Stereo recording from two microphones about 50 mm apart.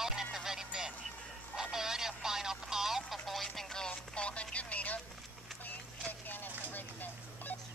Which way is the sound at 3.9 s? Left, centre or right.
Left.